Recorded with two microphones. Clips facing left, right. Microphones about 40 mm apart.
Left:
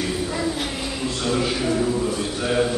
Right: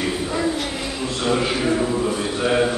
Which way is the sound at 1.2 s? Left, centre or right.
Centre.